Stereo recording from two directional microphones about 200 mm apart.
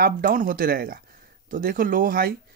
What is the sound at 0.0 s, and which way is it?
Speech, 45° right (ahead or behind).